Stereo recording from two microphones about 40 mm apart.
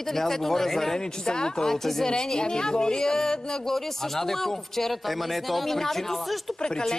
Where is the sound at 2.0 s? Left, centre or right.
Centre.